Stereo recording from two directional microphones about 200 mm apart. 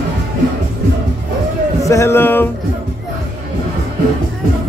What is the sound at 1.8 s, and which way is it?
Speech, 15° left (ahead or behind).